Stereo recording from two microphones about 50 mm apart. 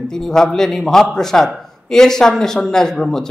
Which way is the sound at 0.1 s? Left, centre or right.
Centre.